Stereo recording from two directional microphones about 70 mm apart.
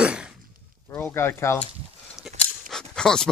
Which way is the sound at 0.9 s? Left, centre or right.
Left.